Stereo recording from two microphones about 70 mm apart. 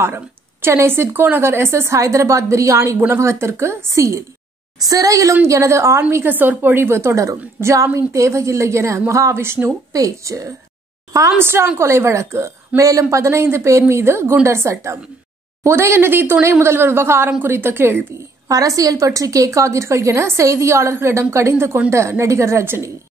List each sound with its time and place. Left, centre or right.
0.0 s a woman's voice: right
4.7 s a woman's voice: right
5.3 s a woman's voice: right
9.9 s a woman's voice: right
11.3 s a woman's voice: right
18.5 s a woman's voice: right